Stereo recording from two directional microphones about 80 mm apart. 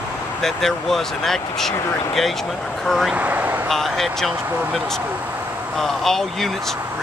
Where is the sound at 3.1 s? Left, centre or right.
Centre.